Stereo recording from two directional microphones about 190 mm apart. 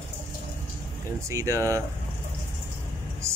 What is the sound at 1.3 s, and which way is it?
Speech, 15° right (ahead or behind).